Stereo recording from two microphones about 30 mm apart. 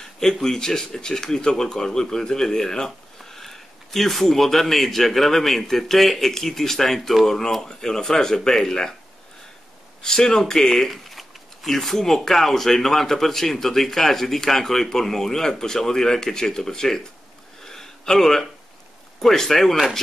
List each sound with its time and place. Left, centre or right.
0.2 s speech: centre
3.3 s speech: centre
10.0 s speech: left
17.6 s a sound: centre
19.1 s speech: centre